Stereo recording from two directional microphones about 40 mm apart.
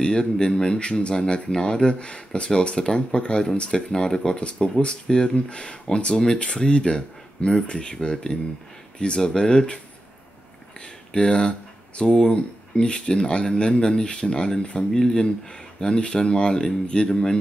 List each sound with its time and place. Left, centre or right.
0.0 s speech: centre
3.9 s speech: centre
11.1 s speech: left
14.9 s speech: centre
15.8 s speech: left